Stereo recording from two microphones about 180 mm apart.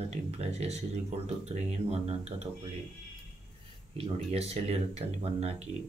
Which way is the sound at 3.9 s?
35° right (ahead or behind).